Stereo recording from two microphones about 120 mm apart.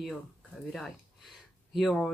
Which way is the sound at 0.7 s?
5° left (ahead or behind).